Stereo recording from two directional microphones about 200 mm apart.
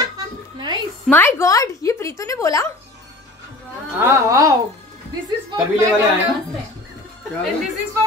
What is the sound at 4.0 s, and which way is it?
Speech, 15° right (ahead or behind).